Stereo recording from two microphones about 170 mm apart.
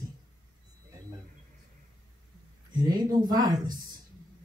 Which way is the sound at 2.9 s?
25° right (ahead or behind).